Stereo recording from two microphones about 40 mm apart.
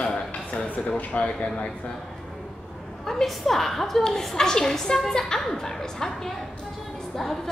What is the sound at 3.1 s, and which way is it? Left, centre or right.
A woman's voice, centre.